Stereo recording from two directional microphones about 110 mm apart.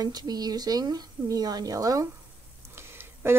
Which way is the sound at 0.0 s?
40° right (ahead or behind).